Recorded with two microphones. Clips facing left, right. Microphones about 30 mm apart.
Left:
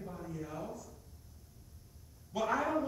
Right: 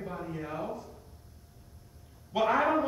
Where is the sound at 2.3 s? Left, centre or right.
Right.